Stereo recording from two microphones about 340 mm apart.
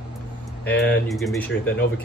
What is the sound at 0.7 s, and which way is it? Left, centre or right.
Speech, left.